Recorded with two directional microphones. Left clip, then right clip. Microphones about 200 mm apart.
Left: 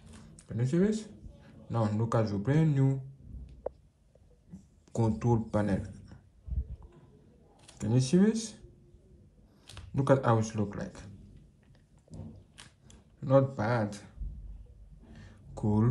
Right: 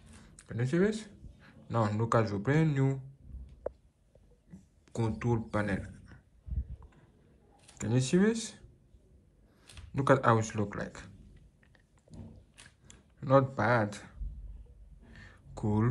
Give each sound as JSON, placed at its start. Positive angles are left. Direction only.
{"t": 0.4, "sound": "speech", "side_deg": 10}
{"t": 4.9, "sound": "speech", "side_deg": 15}
{"t": 7.6, "sound": "speech", "side_deg": 10}
{"t": 9.9, "sound": "speech", "side_deg": 10}
{"t": 12.8, "sound": "speech", "side_deg": 10}
{"t": 15.1, "sound": "a sound", "side_deg": 15}